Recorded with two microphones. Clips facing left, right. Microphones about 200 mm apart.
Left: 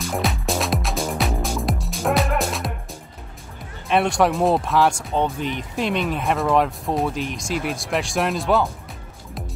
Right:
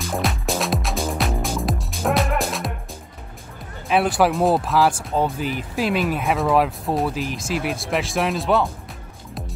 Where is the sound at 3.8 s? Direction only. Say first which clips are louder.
Even; 5° right (ahead or behind).